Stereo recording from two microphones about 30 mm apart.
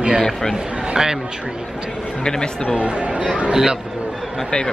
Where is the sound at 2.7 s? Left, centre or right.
Right.